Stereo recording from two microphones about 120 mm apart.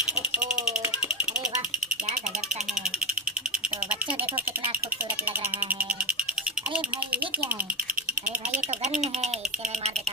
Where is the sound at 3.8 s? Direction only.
10° right (ahead or behind).